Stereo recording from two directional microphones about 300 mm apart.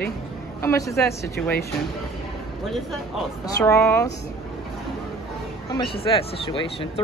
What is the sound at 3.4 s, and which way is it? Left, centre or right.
Speech, centre.